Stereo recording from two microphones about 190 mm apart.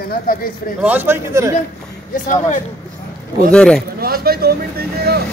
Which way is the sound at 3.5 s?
5° left (ahead or behind).